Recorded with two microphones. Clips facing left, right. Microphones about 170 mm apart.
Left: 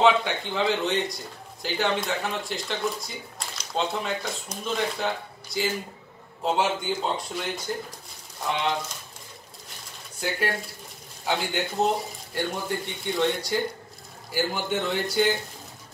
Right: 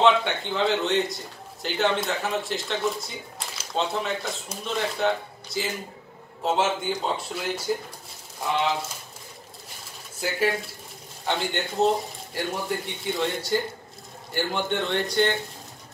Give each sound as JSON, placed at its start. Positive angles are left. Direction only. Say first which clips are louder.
{"t": 0.0, "sound": "a man's voice", "louder": "even", "side_deg": 0}
{"t": 10.2, "sound": "a man's voice", "louder": "right 3 dB", "side_deg": 0}